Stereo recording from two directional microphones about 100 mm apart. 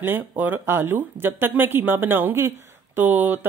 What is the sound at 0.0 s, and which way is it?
Speech, 20° right (ahead or behind).